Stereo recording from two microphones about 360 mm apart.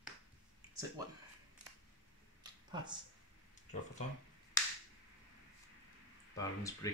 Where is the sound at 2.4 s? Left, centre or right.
Centre.